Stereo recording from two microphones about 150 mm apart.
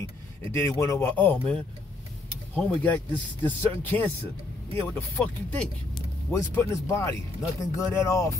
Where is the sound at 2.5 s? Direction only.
10° left (ahead or behind).